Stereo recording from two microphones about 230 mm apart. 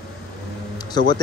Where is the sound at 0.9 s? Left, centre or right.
Centre.